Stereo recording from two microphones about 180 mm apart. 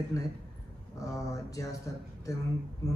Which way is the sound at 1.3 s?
20° left (ahead or behind).